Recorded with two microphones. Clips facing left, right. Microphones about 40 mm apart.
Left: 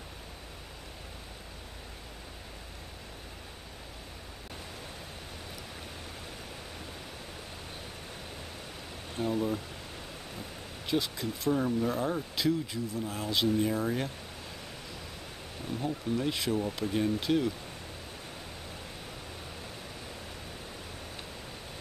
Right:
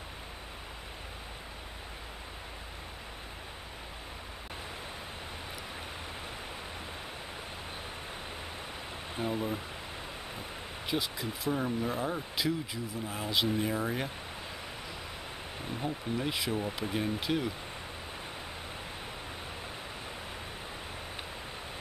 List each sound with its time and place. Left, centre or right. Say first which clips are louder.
9.1 s speech: left 3 dB; centre
10.9 s speech: left 3 dB; centre
15.6 s speech: left 2 dB; centre